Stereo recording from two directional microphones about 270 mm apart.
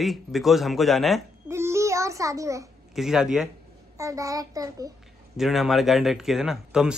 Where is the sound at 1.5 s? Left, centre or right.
Centre.